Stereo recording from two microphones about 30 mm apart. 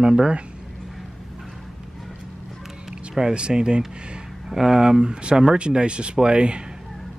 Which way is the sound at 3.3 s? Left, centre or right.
Right.